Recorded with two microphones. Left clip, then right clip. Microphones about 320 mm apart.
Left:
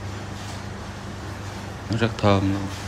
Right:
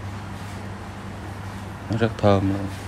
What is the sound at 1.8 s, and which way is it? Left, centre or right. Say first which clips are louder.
Speech: right 1 dB; centre.